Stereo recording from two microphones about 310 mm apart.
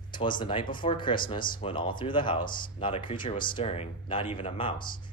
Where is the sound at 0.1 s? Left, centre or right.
Centre.